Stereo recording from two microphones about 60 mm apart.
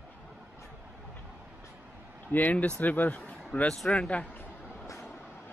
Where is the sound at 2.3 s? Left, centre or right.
Left.